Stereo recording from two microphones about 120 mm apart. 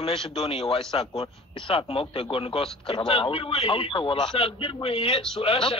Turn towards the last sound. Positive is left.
turn(degrees=50)  # may be behind; listen again after turning